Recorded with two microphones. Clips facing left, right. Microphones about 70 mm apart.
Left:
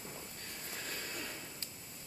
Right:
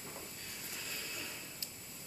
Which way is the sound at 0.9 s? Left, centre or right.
Left.